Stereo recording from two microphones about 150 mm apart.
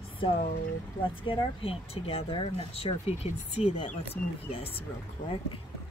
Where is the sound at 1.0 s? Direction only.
35° left (ahead or behind).